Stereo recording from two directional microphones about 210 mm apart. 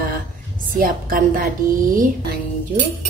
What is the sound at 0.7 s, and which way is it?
Speech, 40° right (ahead or behind).